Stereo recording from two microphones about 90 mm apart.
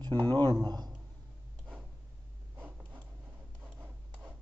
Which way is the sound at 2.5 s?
20° right (ahead or behind).